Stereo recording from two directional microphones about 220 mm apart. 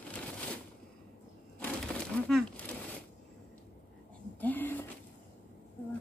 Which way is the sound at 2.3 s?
Centre (ahead or behind).